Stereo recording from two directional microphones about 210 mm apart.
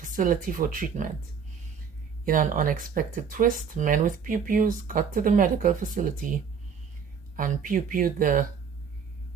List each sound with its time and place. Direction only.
0.0 s speech: 40° right (ahead or behind)
2.2 s speech: 40° right (ahead or behind)